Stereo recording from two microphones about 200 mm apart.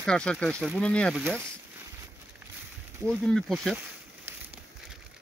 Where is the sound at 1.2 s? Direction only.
10° right (ahead or behind).